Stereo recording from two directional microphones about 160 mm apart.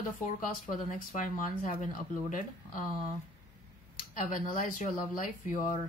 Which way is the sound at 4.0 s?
60° left (ahead or behind).